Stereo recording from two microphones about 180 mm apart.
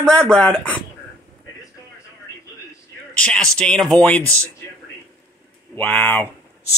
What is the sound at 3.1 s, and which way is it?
Speech, 5° left (ahead or behind).